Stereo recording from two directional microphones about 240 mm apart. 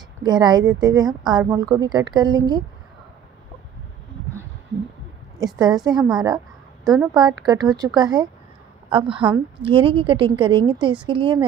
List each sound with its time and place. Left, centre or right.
0.2 s a woman's voice: centre
5.4 s a woman's voice: centre
6.8 s a sound: centre
7.2 s a woman's voice: centre